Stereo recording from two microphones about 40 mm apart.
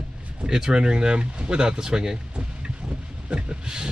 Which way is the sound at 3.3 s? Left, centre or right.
Centre.